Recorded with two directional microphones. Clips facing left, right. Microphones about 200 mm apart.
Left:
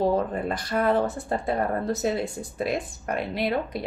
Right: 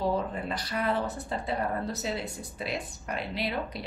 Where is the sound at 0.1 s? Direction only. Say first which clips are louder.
Left 5 dB; 50° left (ahead or behind).